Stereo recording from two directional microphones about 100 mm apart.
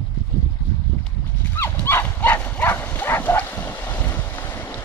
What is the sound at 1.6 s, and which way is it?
Dog, 25° left (ahead or behind).